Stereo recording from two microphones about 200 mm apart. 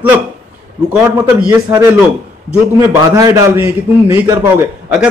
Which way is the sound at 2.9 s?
15° right (ahead or behind).